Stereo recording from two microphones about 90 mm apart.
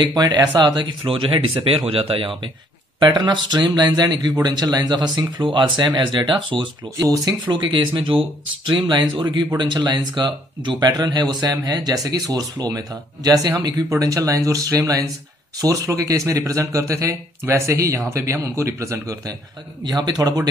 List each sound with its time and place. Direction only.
0.0 s speech: 50° right (ahead or behind)
1.0 s speech: 75° right (ahead or behind)
3.0 s speech: 60° right (ahead or behind)
7.0 s speech: 45° right (ahead or behind)
7.7 s a man's voice: 65° right (ahead or behind); by 19.3 s 35° right (ahead or behind)
19.8 s speech: 50° right (ahead or behind)